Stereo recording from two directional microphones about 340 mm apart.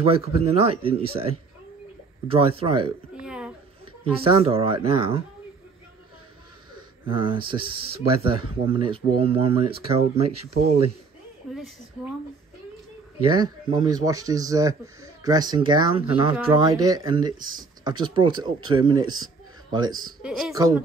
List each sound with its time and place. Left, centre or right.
0.0 s speech: centre
3.2 s a sound: centre
4.2 s speech: centre
7.1 s speech: centre
13.4 s a man's voice: centre